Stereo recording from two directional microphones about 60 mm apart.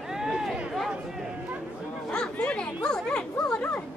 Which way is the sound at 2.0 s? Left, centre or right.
Centre.